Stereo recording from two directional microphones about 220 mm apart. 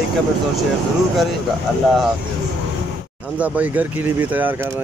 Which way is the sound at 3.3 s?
5° right (ahead or behind).